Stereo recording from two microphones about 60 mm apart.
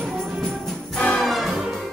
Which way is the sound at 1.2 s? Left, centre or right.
Centre.